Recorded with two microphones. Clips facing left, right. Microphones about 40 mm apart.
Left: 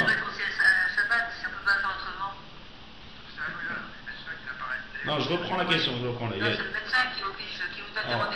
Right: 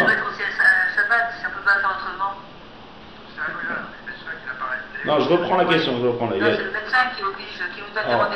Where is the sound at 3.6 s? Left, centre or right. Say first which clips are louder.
Right 7 dB; right.